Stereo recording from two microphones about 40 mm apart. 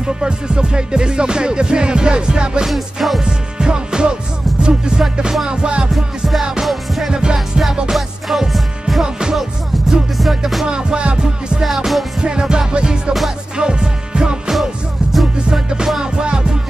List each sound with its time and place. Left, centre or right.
0.0 s music: right
2.6 s music: centre
3.3 s music: right
5.9 s music: centre
7.1 s music: centre
7.3 s music: centre
10.7 s music: right
11.6 s music: centre
12.2 s music: right
15.5 s music: centre